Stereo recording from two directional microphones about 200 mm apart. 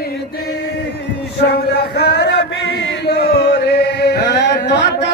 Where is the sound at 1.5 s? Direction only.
55° left (ahead or behind).